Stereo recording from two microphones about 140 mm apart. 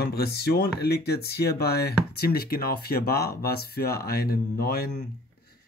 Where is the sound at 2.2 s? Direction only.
90° left.